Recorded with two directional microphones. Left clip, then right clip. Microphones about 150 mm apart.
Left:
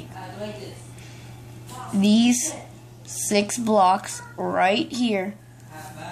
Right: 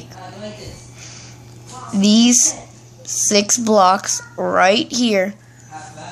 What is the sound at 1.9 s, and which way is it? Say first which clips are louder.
A woman's voice: right 6 dB; 25° right (ahead or behind).